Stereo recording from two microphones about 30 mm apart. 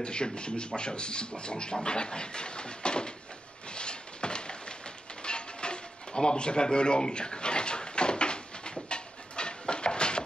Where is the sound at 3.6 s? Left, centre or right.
Left.